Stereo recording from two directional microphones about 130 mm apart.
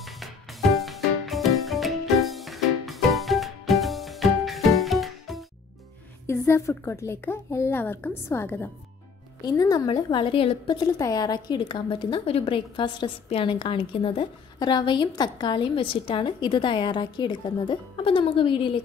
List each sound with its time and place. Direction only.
0.0 s music: centre (ahead or behind)
6.2 s a woman's voice: 20° left (ahead or behind)
9.4 s a woman's voice: 30° left (ahead or behind)
10.0 s a woman's voice: 40° left (ahead or behind)
11.0 s a woman's voice: 30° left (ahead or behind)